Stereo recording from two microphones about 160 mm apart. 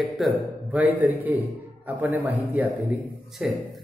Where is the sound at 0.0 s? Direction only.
5° right (ahead or behind).